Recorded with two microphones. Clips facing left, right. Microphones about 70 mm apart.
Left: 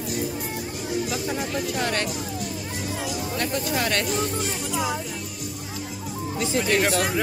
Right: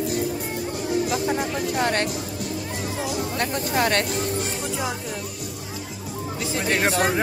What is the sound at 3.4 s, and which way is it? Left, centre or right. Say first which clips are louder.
Speech: right 2 dB; right.